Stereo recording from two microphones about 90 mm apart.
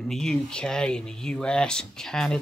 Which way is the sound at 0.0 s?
5° left (ahead or behind).